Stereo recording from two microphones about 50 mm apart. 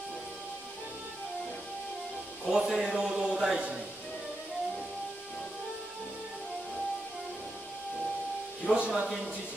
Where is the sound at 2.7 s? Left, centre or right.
Centre.